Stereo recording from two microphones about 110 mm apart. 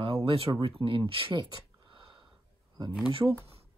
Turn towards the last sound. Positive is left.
turn(degrees=-10)  # may be behind; listen again after turning